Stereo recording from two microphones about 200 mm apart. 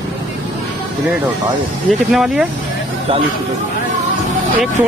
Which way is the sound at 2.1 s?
Centre (ahead or behind).